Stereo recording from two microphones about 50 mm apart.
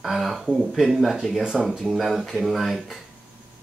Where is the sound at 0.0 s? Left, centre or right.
Centre.